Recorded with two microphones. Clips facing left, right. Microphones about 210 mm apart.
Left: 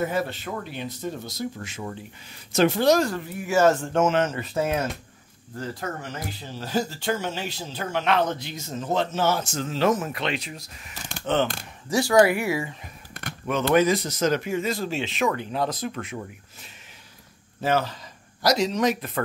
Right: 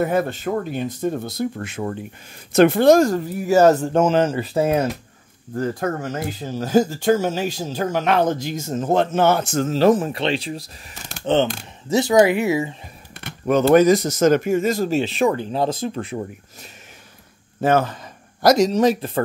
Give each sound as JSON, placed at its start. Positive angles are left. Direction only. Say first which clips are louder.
{"t": 0.0, "sound": "speech", "louder": "right 6 dB", "side_deg": -55}
{"t": 5.5, "sound": "speech", "louder": "right 9 dB", "side_deg": -50}
{"t": 11.9, "sound": "speech", "louder": "right 3 dB", "side_deg": -20}
{"t": 13.5, "sound": "speech", "louder": "right 7 dB", "side_deg": -40}
{"t": 17.6, "sound": "speech", "louder": "right 6 dB", "side_deg": -50}
{"t": 18.7, "sound": "speech", "louder": "right 6 dB", "side_deg": -30}